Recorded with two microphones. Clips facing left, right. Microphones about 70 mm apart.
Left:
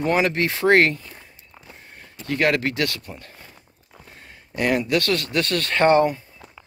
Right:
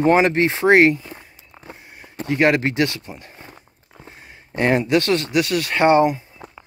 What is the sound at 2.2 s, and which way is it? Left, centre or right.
Speech, right.